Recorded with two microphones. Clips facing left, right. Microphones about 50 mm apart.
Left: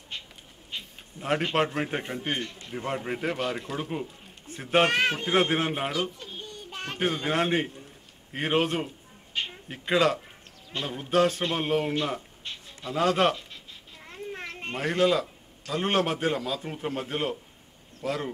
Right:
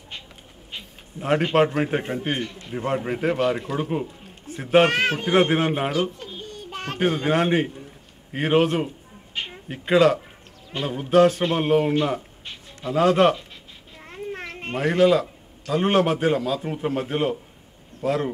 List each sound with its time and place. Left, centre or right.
0.7 s a sound: centre
1.8 s a man's voice: centre
14.0 s child singing: centre
14.6 s a man's voice: centre